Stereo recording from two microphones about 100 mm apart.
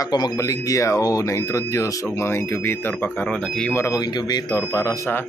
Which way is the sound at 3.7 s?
35° left (ahead or behind).